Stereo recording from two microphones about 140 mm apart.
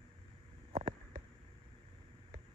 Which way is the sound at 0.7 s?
45° right (ahead or behind).